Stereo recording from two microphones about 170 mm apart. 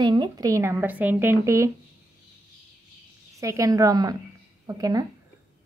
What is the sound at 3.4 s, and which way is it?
A woman's voice, 20° right (ahead or behind).